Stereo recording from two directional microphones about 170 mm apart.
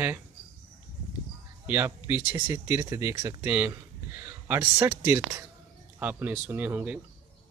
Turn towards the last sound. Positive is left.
turn(degrees=-10)  # may be behind; listen again after turning